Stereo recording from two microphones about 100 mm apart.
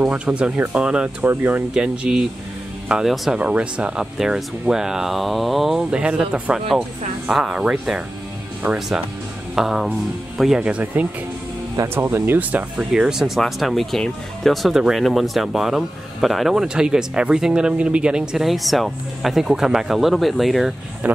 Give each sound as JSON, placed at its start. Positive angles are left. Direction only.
{"t": 0.0, "sound": "speech", "side_deg": -10}
{"t": 1.7, "sound": "speech", "side_deg": -5}
{"t": 10.6, "sound": "speech", "side_deg": -15}